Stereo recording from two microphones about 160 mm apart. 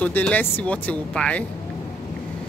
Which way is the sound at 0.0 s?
10° left (ahead or behind).